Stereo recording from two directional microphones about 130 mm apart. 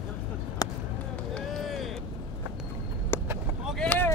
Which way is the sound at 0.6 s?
30° left (ahead or behind).